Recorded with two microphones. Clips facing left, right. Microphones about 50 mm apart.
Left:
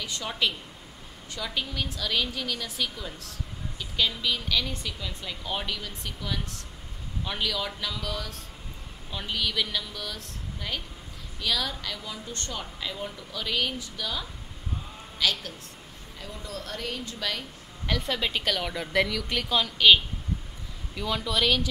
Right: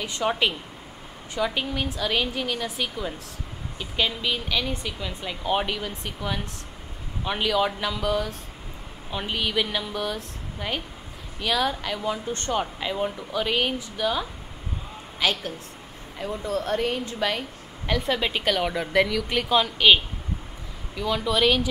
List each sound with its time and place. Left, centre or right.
0.0 s speech: right
17.8 s speech: centre
20.9 s speech: centre